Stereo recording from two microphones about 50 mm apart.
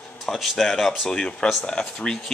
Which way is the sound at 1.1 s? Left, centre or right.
Centre.